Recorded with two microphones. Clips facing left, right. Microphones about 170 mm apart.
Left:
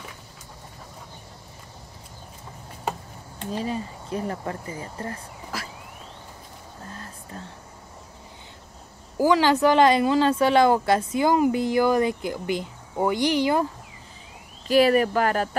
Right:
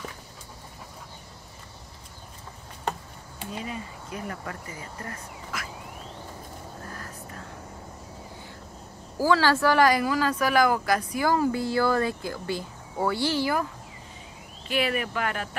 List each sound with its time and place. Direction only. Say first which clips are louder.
3.5 s speech: left 7 dB; 30° left (ahead or behind)
6.9 s vehicle: left 1 dB; 25° left (ahead or behind)
9.2 s speech: left 3 dB; 20° left (ahead or behind)
14.7 s speech: left 9 dB; 40° left (ahead or behind)